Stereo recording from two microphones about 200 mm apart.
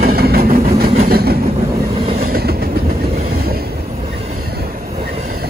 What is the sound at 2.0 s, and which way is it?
Train, 30° right (ahead or behind).